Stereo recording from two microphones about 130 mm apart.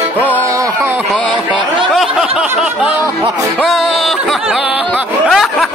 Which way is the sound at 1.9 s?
Centre (ahead or behind).